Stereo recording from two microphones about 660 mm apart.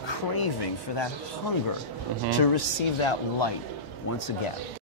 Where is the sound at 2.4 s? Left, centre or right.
Left.